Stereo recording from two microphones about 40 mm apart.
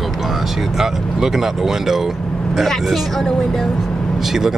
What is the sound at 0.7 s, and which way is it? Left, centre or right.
Speech, centre.